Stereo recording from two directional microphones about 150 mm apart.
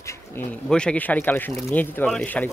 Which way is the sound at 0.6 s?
5° left (ahead or behind).